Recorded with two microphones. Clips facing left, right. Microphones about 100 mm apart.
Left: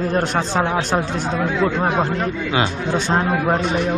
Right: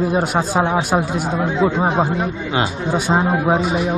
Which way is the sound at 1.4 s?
20° right (ahead or behind).